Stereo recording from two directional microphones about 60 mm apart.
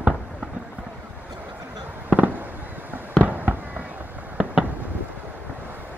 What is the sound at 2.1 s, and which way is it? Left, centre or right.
Fireworks, right.